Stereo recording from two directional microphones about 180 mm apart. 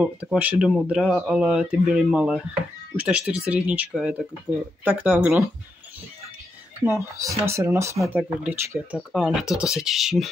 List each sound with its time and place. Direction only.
0.0 s speech: 5° right (ahead or behind)
6.9 s speech: 15° right (ahead or behind)
8.2 s speech: 5° right (ahead or behind)